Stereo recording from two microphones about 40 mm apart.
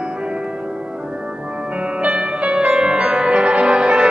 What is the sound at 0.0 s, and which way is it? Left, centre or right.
Music, right.